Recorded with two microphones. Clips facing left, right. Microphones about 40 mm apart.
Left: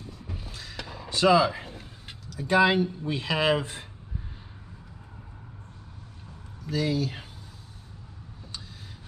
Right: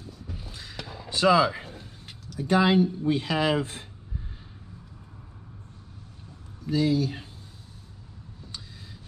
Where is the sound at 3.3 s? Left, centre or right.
Left.